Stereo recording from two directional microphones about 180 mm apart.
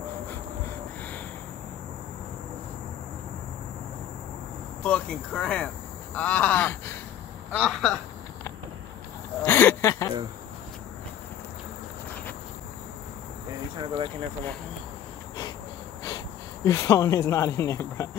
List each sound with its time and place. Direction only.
4.8 s speech: 5° left (ahead or behind)
9.4 s a sound: 10° left (ahead or behind)
13.7 s speech: 30° right (ahead or behind)
16.6 s speech: 15° left (ahead or behind)